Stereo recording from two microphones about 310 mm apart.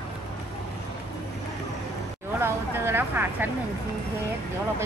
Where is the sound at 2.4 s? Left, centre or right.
Centre.